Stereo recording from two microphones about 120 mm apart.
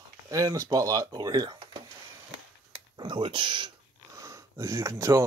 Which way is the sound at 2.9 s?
45° right (ahead or behind).